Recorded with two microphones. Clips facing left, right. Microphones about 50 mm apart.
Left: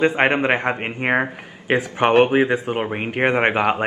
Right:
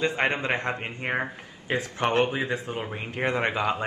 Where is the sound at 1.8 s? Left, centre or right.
Left.